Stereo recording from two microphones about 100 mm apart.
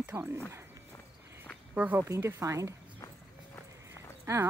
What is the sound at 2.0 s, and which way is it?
Speech, 30° right (ahead or behind).